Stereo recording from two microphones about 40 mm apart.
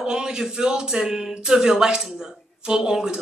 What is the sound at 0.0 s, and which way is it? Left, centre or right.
Speech, centre.